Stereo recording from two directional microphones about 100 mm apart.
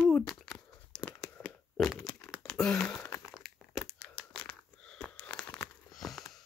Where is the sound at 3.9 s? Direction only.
20° left (ahead or behind).